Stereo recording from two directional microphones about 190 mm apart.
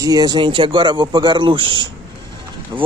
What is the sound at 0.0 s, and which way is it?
Speech, 20° right (ahead or behind).